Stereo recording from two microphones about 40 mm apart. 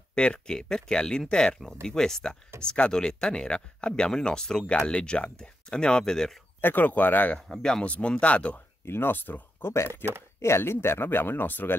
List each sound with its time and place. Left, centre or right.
0.1 s speech: left
4.6 s speech: left
6.6 s speech: left
7.8 s speech: left
8.8 s speech: left
9.6 s speech: left
10.6 s speech: left